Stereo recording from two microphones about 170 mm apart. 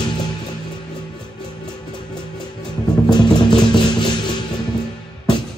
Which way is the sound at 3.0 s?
25° left (ahead or behind).